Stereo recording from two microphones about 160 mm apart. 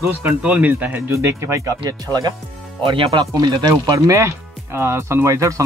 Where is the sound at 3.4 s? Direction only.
20° right (ahead or behind).